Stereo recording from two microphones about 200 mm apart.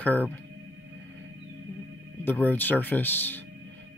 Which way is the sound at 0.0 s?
10° left (ahead or behind).